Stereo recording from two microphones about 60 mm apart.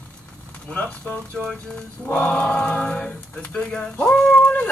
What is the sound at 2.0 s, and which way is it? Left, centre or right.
Speech, left.